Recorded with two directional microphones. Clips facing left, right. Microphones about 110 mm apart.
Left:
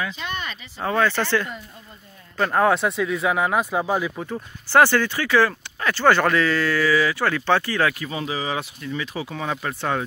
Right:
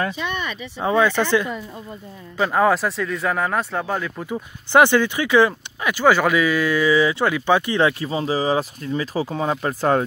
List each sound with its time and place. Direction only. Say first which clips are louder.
0.7 s speech: right 3 dB; 15° right (ahead or behind)
2.3 s speech: right 1 dB; 5° right (ahead or behind)
4.3 s speech: right 5 dB; 15° right (ahead or behind); by 10.0 s 40° right (ahead or behind)